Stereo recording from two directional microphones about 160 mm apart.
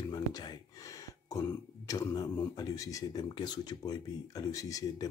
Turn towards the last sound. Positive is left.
turn(degrees=20)  # may be behind; listen again after turning